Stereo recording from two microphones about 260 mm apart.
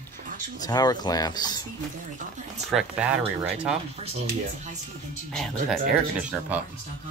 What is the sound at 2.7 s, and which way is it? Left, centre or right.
Speech, centre.